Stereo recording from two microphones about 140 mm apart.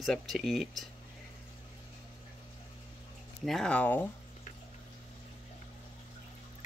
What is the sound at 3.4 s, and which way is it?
Speech, centre (ahead or behind).